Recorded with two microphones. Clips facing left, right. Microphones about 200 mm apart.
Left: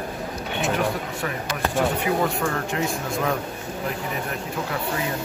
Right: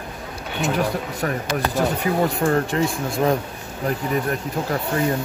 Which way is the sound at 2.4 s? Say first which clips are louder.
Right 6 dB; 40° right (ahead or behind).